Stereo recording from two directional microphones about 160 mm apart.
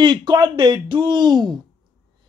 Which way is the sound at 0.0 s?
30° right (ahead or behind).